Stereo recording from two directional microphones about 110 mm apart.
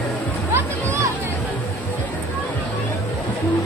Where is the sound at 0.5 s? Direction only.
25° right (ahead or behind).